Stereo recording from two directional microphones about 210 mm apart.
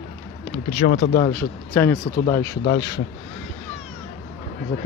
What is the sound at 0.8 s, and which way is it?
Speech, 45° left (ahead or behind).